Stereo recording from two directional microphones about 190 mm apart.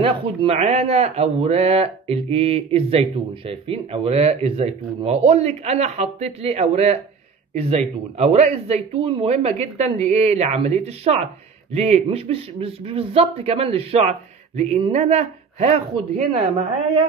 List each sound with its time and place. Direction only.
0.0 s speech: 30° right (ahead or behind)